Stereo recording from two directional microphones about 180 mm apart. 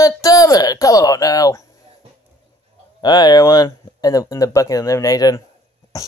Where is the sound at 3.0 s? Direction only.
25° left (ahead or behind).